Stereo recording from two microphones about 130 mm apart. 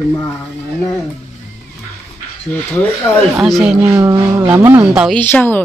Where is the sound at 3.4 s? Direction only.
Centre (ahead or behind).